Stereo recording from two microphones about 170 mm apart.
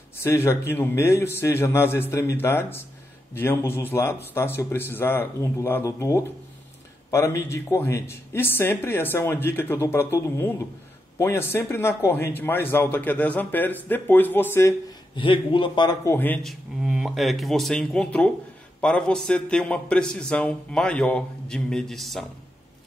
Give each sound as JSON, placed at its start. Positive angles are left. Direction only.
{"t": 0.2, "sound": "speech", "side_deg": 15}
{"t": 15.1, "sound": "a man's voice", "side_deg": 30}
{"t": 16.4, "sound": "a man's voice", "side_deg": -5}